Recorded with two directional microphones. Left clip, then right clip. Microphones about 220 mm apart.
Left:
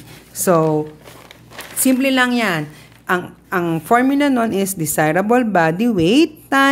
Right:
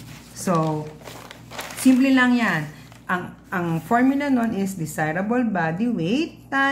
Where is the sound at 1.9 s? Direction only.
50° left (ahead or behind).